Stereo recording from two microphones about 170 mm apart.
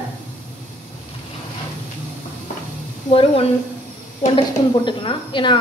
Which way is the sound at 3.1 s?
35° left (ahead or behind).